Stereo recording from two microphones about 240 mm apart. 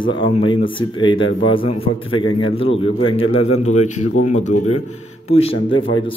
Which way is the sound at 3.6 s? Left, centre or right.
Left.